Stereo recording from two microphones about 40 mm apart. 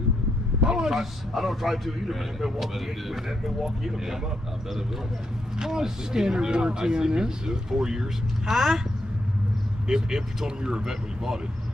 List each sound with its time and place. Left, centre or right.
0.6 s a sound: right
0.8 s a man's voice: centre
5.6 s a man's voice: centre
9.8 s speech: centre